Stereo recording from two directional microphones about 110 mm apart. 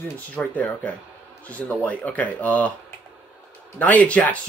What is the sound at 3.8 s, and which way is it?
Speech, 15° left (ahead or behind).